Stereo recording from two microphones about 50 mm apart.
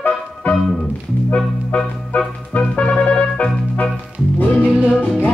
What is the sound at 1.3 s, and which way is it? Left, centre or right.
Music, left.